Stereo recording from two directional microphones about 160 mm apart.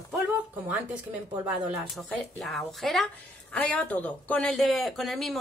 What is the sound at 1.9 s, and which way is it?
Speech, centre (ahead or behind).